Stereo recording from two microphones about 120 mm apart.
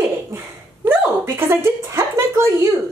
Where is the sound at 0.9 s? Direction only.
15° right (ahead or behind).